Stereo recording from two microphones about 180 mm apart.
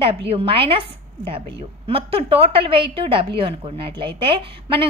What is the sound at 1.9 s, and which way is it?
A woman's voice, 30° right (ahead or behind).